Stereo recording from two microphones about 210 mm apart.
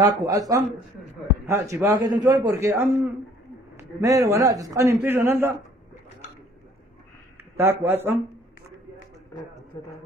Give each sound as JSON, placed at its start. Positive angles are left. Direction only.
{"t": 0.2, "sound": "a man's voice", "side_deg": -15}
{"t": 7.5, "sound": "a man's voice", "side_deg": -10}